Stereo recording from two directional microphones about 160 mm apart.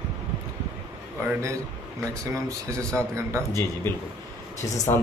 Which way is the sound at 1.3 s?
20° right (ahead or behind).